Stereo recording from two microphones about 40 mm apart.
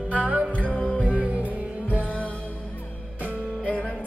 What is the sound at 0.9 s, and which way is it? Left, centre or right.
Music, right.